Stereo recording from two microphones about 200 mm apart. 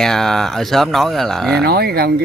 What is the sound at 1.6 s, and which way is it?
Speech, 50° right (ahead or behind).